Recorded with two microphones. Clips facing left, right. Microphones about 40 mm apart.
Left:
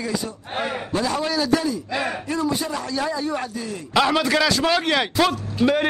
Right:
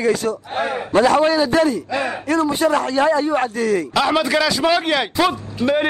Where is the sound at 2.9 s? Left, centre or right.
Right.